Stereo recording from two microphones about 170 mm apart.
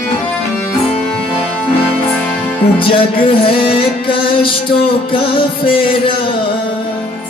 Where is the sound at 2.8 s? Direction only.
30° left (ahead or behind).